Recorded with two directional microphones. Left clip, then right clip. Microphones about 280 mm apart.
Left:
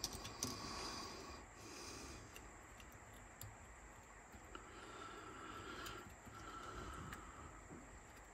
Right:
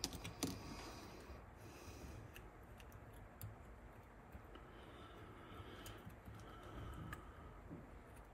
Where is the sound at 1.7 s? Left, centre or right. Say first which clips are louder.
Left 6 dB; left.